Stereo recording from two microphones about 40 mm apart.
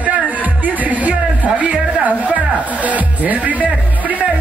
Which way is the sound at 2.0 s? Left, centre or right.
Right.